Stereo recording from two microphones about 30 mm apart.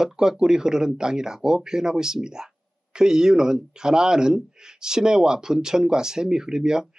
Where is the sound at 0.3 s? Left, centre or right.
Centre.